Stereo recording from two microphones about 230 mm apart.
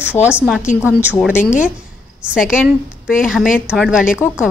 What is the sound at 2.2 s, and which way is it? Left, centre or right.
A woman's voice, centre.